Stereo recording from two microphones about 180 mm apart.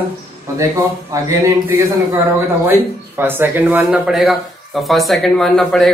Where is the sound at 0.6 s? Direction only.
15° right (ahead or behind).